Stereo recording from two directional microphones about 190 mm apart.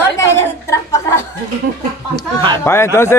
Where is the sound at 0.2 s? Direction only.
15° left (ahead or behind).